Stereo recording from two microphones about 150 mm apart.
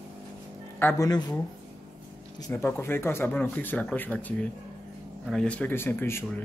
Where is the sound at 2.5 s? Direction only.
15° left (ahead or behind).